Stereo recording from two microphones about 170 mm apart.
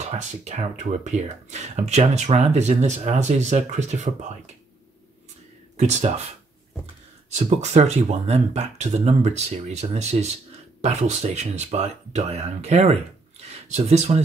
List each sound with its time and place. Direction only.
0.0 s speech: 40° right (ahead or behind)
5.8 s speech: 40° right (ahead or behind)
7.2 s speech: 40° right (ahead or behind)